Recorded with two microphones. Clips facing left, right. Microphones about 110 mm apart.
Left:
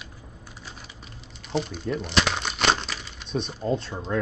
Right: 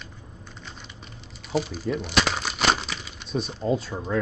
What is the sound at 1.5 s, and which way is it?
Speech, centre (ahead or behind).